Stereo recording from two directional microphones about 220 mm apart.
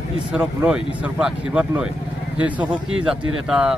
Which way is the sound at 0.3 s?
5° right (ahead or behind).